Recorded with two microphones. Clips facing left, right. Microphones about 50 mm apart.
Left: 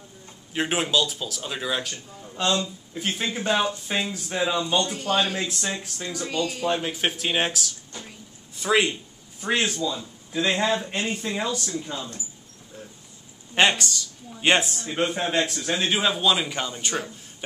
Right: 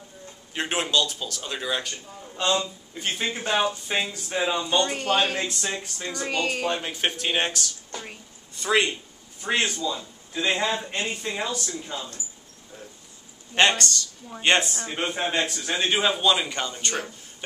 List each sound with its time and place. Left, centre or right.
0.6 s speech: centre
4.9 s speech: right
5.5 s speech: centre
6.2 s speech: right
6.7 s a man's voice: centre
13.6 s speech: centre
14.9 s speech: centre